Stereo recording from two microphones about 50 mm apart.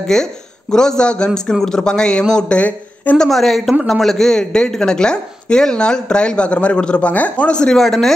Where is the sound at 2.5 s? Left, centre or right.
Left.